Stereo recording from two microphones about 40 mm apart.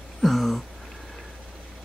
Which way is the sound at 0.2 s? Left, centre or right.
Centre.